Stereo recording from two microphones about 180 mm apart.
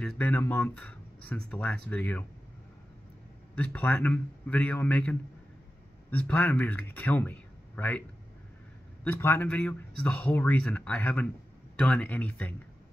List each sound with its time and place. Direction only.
0.0 s speech: 5° left (ahead or behind)
3.5 s speech: 5° left (ahead or behind)
9.0 s speech: 10° left (ahead or behind)